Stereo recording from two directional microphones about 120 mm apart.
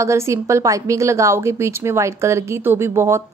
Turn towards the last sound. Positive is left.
turn(degrees=-20)  # may be behind; listen again after turning